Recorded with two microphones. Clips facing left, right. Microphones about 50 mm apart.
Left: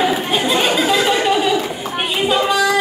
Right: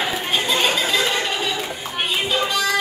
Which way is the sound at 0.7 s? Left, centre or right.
Left.